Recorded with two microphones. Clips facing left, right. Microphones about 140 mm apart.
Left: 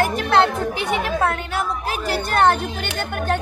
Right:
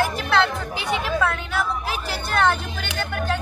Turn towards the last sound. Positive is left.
turn(degrees=55)  # may be behind; listen again after turning